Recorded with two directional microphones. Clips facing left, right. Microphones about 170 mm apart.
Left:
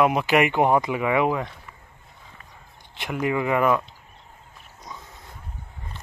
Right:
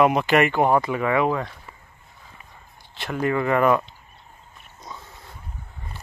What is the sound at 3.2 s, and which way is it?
Speech, 10° left (ahead or behind).